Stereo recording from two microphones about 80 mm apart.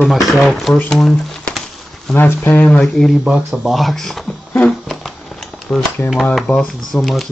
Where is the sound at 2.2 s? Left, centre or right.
Left.